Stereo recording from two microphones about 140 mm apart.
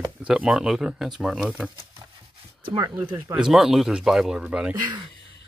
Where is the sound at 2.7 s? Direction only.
30° right (ahead or behind).